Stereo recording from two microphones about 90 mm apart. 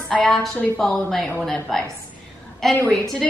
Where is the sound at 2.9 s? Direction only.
5° left (ahead or behind).